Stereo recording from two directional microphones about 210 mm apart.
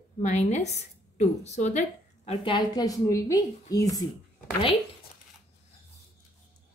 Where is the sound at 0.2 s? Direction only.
35° left (ahead or behind); by 4.0 s 15° left (ahead or behind).